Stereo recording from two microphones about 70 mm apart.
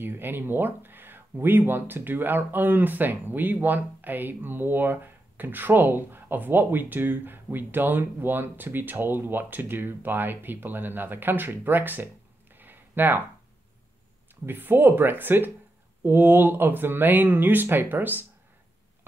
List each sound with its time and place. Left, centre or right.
0.0 s speech: right
12.5 s a sound: right
14.3 s speech: right